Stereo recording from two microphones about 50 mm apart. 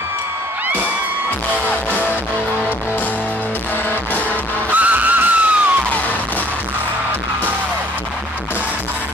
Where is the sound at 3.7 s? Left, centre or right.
Left.